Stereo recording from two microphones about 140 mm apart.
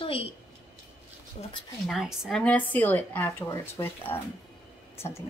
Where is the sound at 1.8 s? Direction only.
5° right (ahead or behind).